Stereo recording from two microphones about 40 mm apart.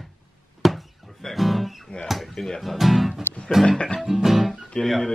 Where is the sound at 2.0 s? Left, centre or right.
Centre.